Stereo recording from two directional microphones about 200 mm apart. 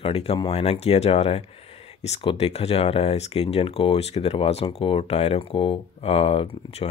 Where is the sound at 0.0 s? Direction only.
30° left (ahead or behind).